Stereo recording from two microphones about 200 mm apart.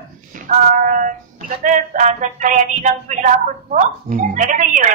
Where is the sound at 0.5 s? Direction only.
40° right (ahead or behind).